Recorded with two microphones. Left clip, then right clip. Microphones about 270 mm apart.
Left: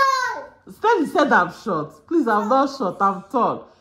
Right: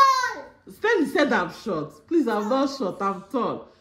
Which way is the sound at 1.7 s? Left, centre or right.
Left.